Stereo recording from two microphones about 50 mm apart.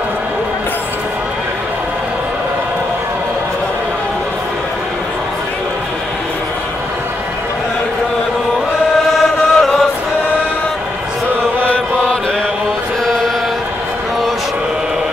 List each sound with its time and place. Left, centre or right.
9.1 s chant: centre
11.7 s mantra: left
13.0 s chant: centre